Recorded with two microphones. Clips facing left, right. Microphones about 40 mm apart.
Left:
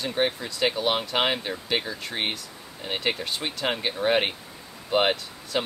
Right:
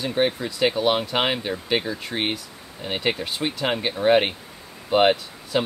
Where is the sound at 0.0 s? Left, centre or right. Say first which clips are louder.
Right 3 dB; centre.